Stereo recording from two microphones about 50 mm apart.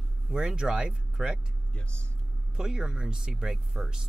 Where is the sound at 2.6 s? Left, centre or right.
Centre.